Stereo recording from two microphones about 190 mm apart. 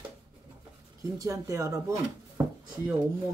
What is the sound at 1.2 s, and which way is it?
Speech, 15° right (ahead or behind).